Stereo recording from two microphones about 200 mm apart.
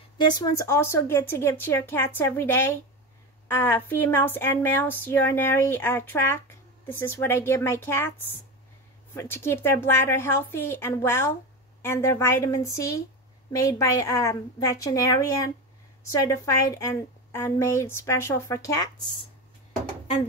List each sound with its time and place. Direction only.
0.2 s speech: 15° left (ahead or behind)